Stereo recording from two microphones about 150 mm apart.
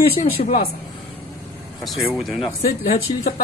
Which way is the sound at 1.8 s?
Centre (ahead or behind).